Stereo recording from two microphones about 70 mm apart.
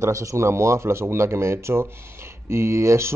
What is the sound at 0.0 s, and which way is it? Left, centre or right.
A man's voice, right.